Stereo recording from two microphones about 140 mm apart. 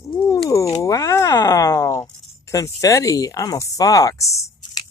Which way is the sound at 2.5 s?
20° left (ahead or behind).